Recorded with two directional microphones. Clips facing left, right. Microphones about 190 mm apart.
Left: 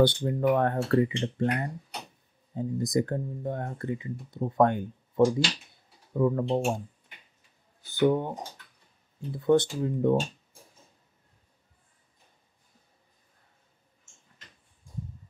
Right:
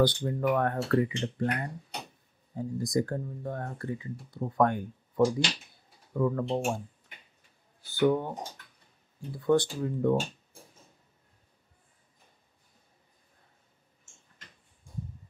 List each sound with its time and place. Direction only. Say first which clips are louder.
0.0 s speech: left 3 dB; 25° left (ahead or behind)
7.9 s speech: left 1 dB; 20° left (ahead or behind)
9.4 s speech: left 2 dB; 20° left (ahead or behind)